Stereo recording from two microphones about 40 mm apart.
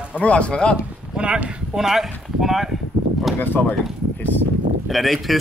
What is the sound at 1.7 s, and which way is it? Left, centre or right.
Speech, centre.